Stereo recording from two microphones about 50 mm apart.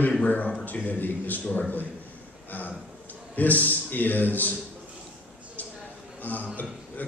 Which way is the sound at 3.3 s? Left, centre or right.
Left.